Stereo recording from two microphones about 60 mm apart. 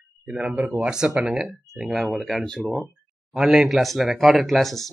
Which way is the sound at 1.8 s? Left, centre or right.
Centre.